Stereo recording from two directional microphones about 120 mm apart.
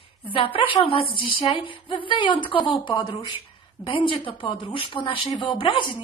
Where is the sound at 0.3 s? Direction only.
50° left (ahead or behind).